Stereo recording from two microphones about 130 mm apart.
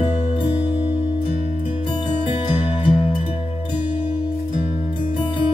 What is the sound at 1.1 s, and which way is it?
Music, 50° left (ahead or behind).